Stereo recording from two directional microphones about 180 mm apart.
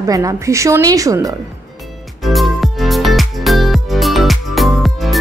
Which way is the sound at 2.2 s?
Centre (ahead or behind).